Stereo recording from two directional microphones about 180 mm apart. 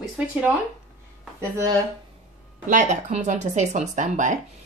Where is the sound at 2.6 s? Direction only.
45° right (ahead or behind).